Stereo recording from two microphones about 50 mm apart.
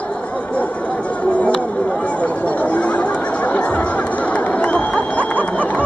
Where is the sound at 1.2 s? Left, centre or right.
Left.